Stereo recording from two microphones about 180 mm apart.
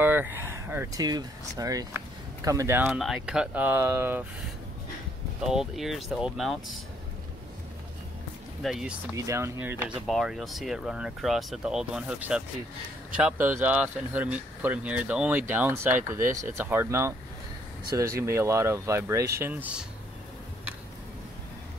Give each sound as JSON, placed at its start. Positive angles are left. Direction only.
{"t": 0.0, "sound": "speech", "side_deg": -10}
{"t": 5.4, "sound": "speech", "side_deg": 0}
{"t": 8.6, "sound": "speech", "side_deg": 0}
{"t": 9.1, "sound": "speech", "side_deg": -15}
{"t": 9.8, "sound": "speech", "side_deg": 0}
{"t": 18.2, "sound": "speech", "side_deg": -15}